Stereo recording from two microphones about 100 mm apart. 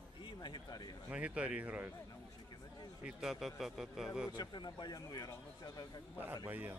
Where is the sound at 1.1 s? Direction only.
10° right (ahead or behind).